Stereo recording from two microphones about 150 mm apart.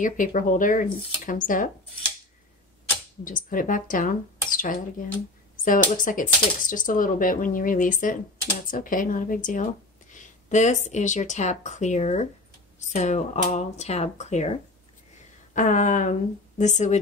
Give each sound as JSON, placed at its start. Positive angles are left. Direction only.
{"t": 0.0, "sound": "speech", "side_deg": 60}
{"t": 3.3, "sound": "speech", "side_deg": 65}